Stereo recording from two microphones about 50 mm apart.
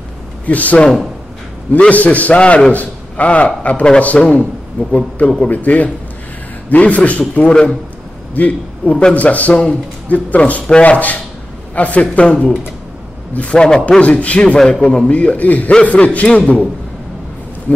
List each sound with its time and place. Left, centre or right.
0.5 s a man's voice: left
1.9 s a man's voice: left
4.1 s a man's voice: centre
4.9 s a man's voice: left
13.6 s a man's voice: centre
13.8 s speech: left